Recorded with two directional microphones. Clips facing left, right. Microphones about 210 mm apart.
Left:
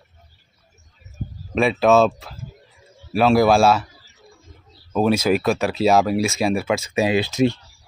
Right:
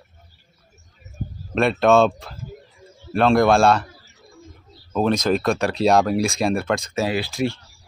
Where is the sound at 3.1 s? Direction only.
5° left (ahead or behind).